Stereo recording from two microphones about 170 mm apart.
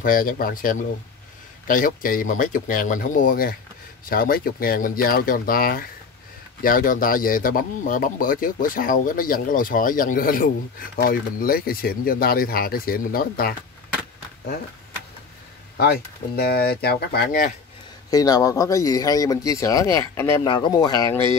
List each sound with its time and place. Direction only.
0.0 s speech: 55° left (ahead or behind)
15.8 s speech: 70° left (ahead or behind)
18.1 s speech: 20° left (ahead or behind)
20.4 s speech: 25° left (ahead or behind)